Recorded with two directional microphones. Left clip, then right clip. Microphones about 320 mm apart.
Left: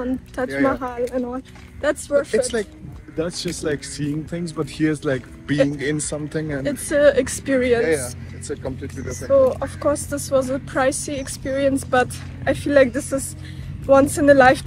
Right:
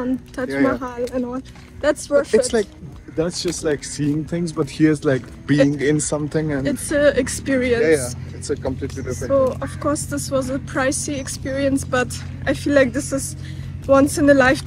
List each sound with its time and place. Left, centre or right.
0.7 s speech: centre
2.3 s speech: centre
6.6 s speech: centre
7.8 s speech: centre
9.1 s speech: centre